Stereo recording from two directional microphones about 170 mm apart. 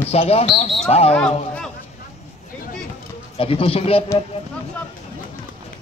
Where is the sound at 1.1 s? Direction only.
5° left (ahead or behind).